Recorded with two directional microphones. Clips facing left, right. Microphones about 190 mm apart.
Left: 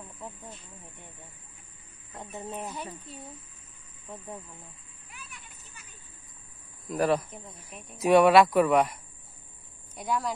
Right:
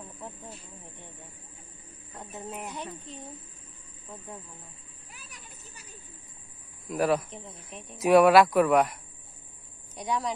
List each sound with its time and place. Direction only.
2.1 s speech: centre (ahead or behind)
5.1 s children playing: 40° right (ahead or behind)
6.9 s speech: centre (ahead or behind)